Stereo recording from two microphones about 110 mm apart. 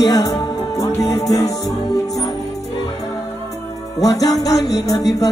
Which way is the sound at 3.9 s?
35° left (ahead or behind).